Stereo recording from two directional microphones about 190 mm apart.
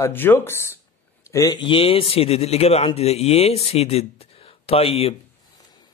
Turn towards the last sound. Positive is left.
turn(degrees=30)  # may be behind; listen again after turning